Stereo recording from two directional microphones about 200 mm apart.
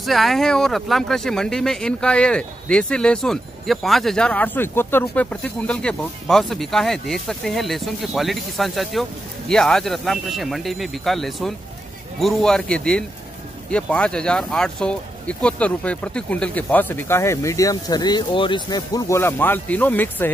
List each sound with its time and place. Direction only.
0.0 s speech: centre (ahead or behind)